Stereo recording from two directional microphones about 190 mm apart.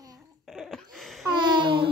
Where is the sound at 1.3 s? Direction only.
25° right (ahead or behind).